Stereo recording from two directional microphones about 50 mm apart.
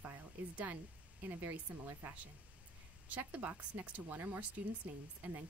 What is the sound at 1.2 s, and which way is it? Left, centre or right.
Speech, right.